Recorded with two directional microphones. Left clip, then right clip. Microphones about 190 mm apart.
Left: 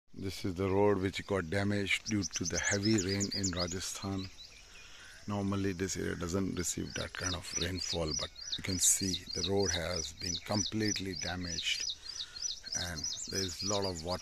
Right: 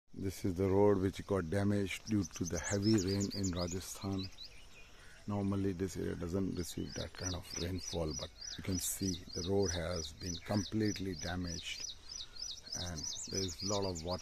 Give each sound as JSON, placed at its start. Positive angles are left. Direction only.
{"t": 0.2, "sound": "speech", "side_deg": -10}
{"t": 5.3, "sound": "speech", "side_deg": 10}
{"t": 11.9, "sound": "bird", "side_deg": -60}
{"t": 12.7, "sound": "speech", "side_deg": 10}